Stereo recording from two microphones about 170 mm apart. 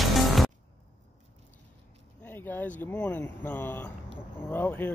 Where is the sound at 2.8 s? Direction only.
10° left (ahead or behind).